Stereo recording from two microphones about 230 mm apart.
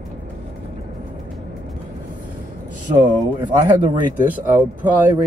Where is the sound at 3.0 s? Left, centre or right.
Centre.